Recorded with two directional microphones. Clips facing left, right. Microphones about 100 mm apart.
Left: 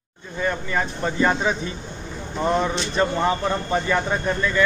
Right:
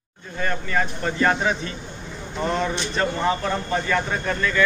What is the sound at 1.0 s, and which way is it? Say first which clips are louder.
Speech: left 1 dB; 15° left (ahead or behind).